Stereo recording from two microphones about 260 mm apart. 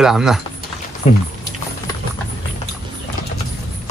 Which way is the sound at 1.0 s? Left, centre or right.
Left.